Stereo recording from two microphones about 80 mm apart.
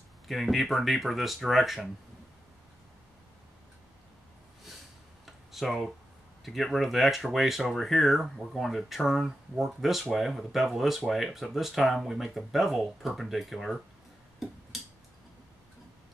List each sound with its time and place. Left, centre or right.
0.3 s speech: centre
5.2 s tick-tock: centre
6.4 s speech: centre